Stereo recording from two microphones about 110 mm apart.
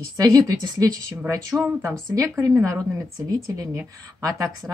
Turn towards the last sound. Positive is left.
turn(degrees=-30)  # may be behind; listen again after turning